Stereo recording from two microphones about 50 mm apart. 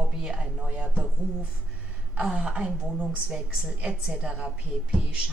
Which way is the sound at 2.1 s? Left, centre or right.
Right.